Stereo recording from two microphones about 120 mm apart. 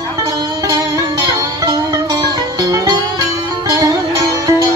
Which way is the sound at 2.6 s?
30° right (ahead or behind).